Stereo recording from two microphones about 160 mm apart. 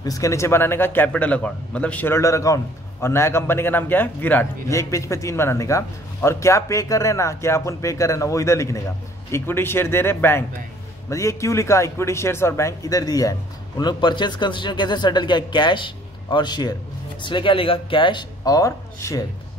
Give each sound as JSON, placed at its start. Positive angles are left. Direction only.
{"t": 0.0, "sound": "a man's voice", "side_deg": 20}